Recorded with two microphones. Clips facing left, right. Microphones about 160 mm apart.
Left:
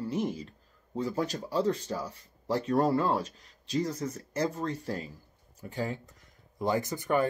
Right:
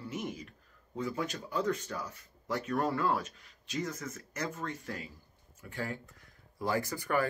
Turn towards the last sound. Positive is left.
turn(degrees=20)  # may be behind; listen again after turning